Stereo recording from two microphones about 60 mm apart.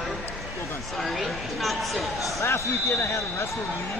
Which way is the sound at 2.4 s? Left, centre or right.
Left.